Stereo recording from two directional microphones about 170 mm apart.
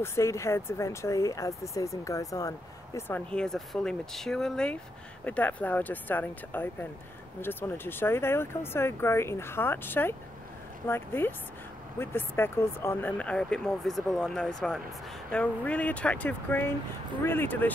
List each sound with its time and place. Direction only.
0.0 s speech: 15° left (ahead or behind)